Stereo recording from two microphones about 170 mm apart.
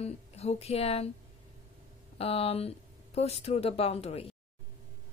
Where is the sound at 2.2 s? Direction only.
35° left (ahead or behind).